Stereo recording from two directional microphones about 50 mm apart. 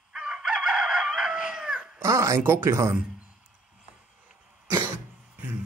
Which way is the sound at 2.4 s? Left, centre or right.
Right.